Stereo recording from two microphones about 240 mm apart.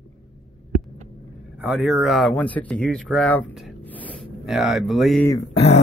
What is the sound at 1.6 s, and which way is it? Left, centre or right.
Speech, centre.